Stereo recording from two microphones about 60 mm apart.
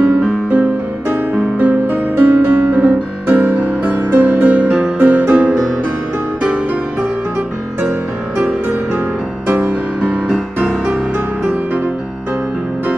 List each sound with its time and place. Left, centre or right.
0.0 s music: right
5.0 s music: right
9.5 s music: right
10.2 s music: centre